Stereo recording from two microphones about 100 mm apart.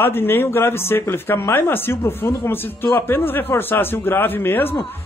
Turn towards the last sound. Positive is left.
turn(degrees=20)  # may be behind; listen again after turning